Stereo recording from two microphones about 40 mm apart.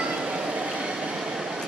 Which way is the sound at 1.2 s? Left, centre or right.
Centre.